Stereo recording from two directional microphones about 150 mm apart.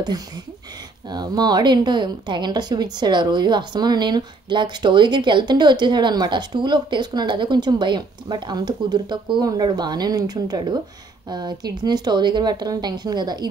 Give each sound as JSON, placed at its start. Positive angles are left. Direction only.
{"t": 1.1, "sound": "a woman's voice", "side_deg": -25}